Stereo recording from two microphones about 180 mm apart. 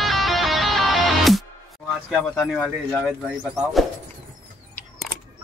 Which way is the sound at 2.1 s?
5° left (ahead or behind).